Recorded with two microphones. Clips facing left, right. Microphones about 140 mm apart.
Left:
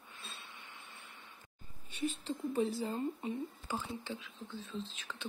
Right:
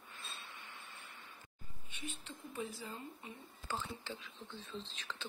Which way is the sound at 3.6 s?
10° left (ahead or behind).